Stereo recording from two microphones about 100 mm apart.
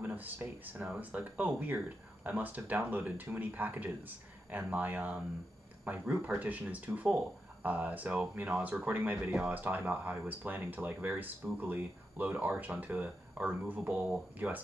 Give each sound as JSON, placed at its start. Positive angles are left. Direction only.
{"t": 0.0, "sound": "speech", "side_deg": -15}